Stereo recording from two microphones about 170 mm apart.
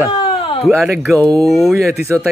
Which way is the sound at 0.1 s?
30° left (ahead or behind).